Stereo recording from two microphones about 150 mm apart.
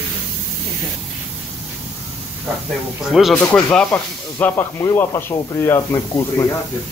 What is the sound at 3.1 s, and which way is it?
Speech, centre (ahead or behind).